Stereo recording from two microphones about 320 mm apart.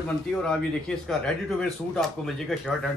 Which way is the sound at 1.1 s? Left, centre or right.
Centre.